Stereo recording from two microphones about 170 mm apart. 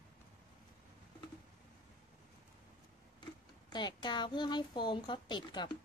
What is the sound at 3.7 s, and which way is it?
Speech, 25° left (ahead or behind).